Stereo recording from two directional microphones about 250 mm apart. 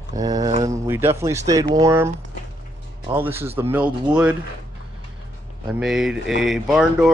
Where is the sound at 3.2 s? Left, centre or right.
Centre.